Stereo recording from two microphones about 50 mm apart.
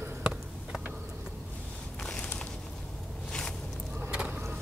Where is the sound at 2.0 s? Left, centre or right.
Centre.